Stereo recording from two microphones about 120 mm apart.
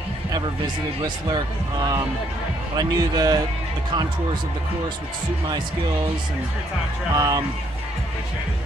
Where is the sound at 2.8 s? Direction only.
35° right (ahead or behind).